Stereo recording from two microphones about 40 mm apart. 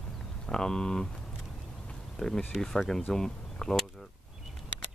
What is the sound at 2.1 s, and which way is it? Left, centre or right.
Speech, centre.